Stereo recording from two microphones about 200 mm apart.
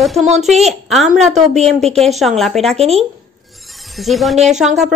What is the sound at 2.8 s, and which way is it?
Speech, 30° right (ahead or behind).